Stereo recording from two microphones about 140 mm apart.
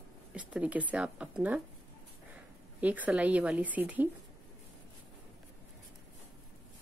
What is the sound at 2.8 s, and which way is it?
A woman's voice, 10° right (ahead or behind).